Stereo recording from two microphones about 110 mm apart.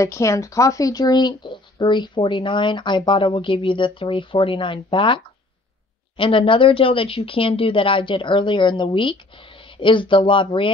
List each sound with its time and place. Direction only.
0.0 s speech: 25° left (ahead or behind); by 10.7 s 50° left (ahead or behind)